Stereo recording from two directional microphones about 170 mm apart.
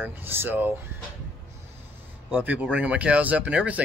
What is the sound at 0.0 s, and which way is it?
Speech, 10° right (ahead or behind).